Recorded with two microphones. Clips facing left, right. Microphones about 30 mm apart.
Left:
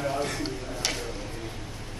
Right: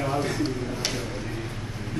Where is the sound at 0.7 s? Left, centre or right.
Centre.